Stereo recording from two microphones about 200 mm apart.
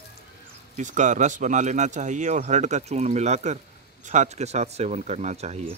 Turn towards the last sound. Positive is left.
turn(degrees=-35)  # may be behind; listen again after turning